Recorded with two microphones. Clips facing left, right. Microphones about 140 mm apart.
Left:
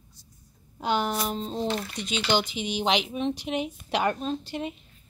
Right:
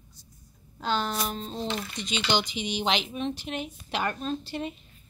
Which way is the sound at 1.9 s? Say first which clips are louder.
Left 1 dB; 5° left (ahead or behind).